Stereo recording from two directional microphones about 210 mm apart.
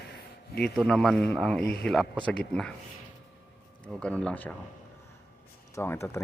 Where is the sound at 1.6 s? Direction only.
50° left (ahead or behind).